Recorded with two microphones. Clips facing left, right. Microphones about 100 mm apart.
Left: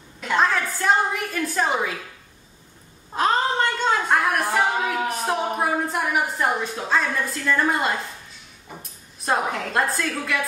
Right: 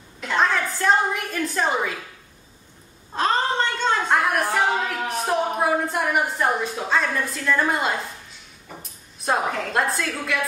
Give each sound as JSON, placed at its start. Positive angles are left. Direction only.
{"t": 0.3, "sound": "a woman's voice", "side_deg": 0}
{"t": 3.2, "sound": "a sound", "side_deg": 5}
{"t": 9.2, "sound": "a woman's voice", "side_deg": 0}